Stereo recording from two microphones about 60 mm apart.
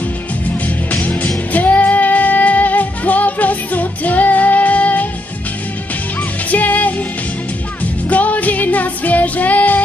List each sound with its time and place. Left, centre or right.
1.5 s music: left
6.5 s music: left